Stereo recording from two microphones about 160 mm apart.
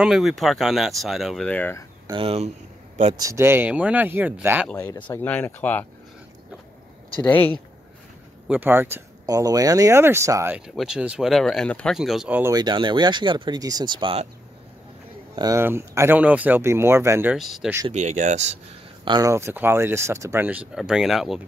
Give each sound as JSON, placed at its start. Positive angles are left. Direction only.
{"t": 0.0, "sound": "speech", "side_deg": 0}
{"t": 2.0, "sound": "speech", "side_deg": -35}
{"t": 3.2, "sound": "speech", "side_deg": -20}
{"t": 4.7, "sound": "speech", "side_deg": 20}
{"t": 5.0, "sound": "speech", "side_deg": 10}
{"t": 7.2, "sound": "speech", "side_deg": 10}
{"t": 8.5, "sound": "speech", "side_deg": -10}
{"t": 10.8, "sound": "speech", "side_deg": -5}
{"t": 12.5, "sound": "speech", "side_deg": -30}
{"t": 15.3, "sound": "speech", "side_deg": -20}
{"t": 17.4, "sound": "speech", "side_deg": 0}
{"t": 17.9, "sound": "speech", "side_deg": -45}
{"t": 19.0, "sound": "speech", "side_deg": -25}